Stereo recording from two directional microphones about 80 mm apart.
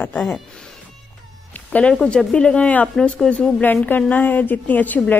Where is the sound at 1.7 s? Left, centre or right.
Centre.